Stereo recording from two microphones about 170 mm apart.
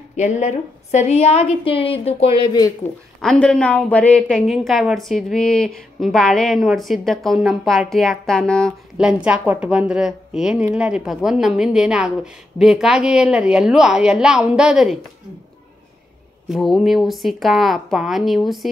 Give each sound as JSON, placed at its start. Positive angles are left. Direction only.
{"t": 0.1, "sound": "a woman's voice", "side_deg": 45}
{"t": 3.2, "sound": "a woman's voice", "side_deg": 5}
{"t": 16.4, "sound": "a woman's voice", "side_deg": 0}